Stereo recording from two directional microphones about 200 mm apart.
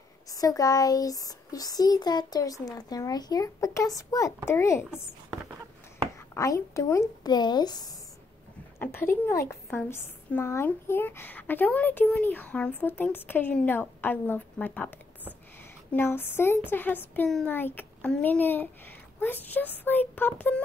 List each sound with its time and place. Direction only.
0.3 s a woman's voice: 15° left (ahead or behind)
6.1 s a woman's voice: 15° left (ahead or behind)